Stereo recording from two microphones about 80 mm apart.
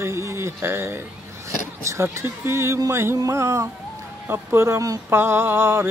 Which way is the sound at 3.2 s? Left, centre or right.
Right.